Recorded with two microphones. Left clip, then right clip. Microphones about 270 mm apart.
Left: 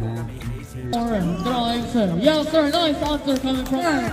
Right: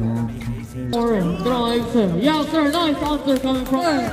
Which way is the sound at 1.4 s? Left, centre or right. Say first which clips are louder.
Right 3 dB; left.